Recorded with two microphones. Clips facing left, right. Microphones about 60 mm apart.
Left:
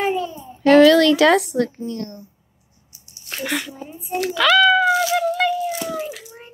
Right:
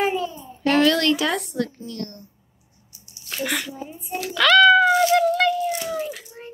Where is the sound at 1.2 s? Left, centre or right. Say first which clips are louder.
Left 10 dB; left.